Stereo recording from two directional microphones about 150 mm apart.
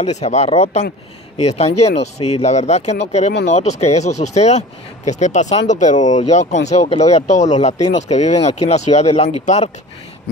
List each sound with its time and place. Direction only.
0.0 s speech: 45° left (ahead or behind)